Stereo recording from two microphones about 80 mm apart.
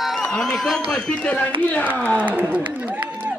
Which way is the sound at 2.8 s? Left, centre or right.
Centre.